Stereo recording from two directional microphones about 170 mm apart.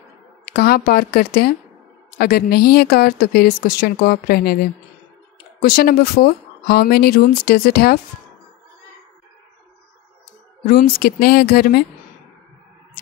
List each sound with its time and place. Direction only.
0.5 s speech: 65° left (ahead or behind)
5.6 s speech: 65° left (ahead or behind)
10.7 s speech: 65° left (ahead or behind)